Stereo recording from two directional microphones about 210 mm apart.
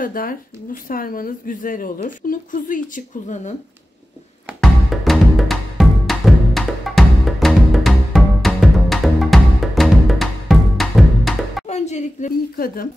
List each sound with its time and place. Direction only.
0.0 s a woman's voice: 40° left (ahead or behind)
4.6 s music: centre (ahead or behind)
11.6 s a woman's voice: 30° left (ahead or behind)